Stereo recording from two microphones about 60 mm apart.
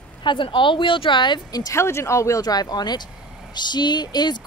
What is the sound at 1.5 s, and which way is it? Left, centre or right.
Speech, left.